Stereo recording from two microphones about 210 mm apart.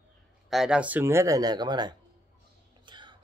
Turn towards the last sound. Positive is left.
turn(degrees=-20)  # may be behind; listen again after turning